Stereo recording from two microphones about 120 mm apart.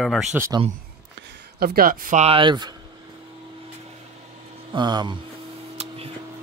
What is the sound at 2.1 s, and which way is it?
Speech, 60° right (ahead or behind).